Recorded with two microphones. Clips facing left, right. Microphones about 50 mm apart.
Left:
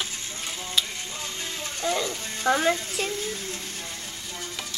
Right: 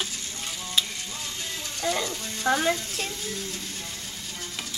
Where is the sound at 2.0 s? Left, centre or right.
Left.